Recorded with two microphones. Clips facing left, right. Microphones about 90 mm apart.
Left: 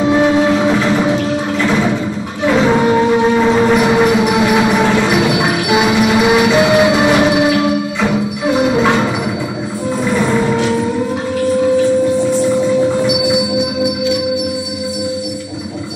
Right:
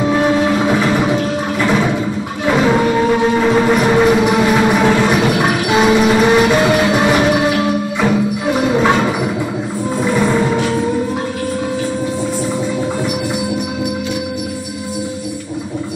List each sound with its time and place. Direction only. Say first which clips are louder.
0.5 s train: left 1 dB; 10° right (ahead or behind)
2.6 s music: left 1 dB; 20° left (ahead or behind)